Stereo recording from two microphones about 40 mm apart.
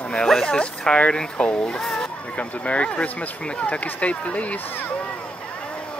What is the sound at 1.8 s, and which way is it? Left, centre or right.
Speech, centre.